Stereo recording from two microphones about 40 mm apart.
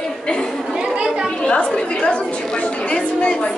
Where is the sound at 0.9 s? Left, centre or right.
Centre.